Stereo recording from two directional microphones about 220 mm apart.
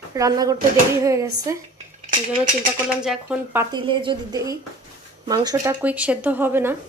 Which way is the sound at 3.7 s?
20° right (ahead or behind).